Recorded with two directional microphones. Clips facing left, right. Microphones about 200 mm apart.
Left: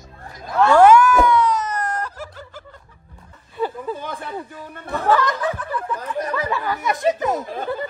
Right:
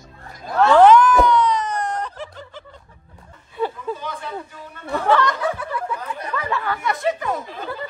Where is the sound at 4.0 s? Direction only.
50° left (ahead or behind).